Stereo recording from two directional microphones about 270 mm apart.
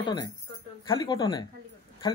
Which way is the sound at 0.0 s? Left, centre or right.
Centre.